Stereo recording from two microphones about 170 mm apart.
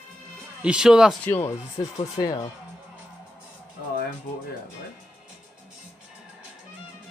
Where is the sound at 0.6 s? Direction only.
5° right (ahead or behind).